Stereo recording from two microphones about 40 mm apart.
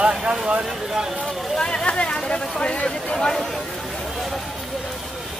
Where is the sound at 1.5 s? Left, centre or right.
Left.